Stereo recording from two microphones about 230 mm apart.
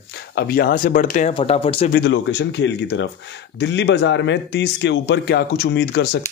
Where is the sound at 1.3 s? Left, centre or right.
Left.